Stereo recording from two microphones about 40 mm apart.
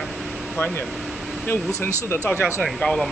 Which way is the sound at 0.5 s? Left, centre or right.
Left.